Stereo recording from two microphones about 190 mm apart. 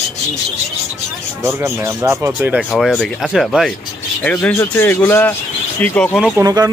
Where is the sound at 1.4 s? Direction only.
15° right (ahead or behind).